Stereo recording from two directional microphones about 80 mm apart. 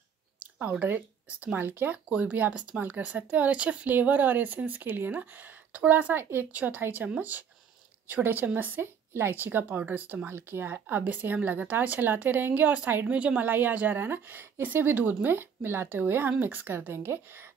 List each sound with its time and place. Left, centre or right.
0.4 s speech: centre